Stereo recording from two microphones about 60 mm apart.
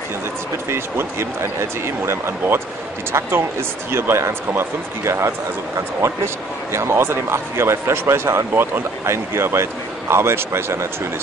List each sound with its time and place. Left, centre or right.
0.7 s speech: right